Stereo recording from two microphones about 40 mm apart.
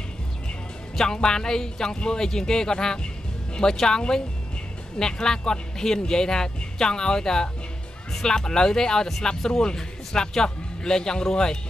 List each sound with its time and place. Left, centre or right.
0.9 s speech: centre